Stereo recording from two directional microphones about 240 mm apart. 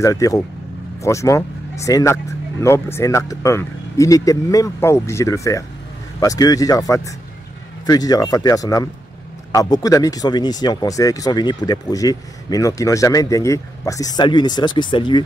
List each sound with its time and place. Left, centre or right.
0.0 s speech: centre